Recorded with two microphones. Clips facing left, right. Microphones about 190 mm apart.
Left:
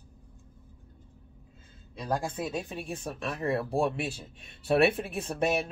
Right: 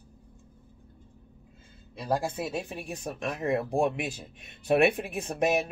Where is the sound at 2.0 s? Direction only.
10° right (ahead or behind).